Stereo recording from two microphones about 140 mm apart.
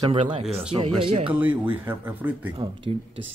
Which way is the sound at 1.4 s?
15° right (ahead or behind).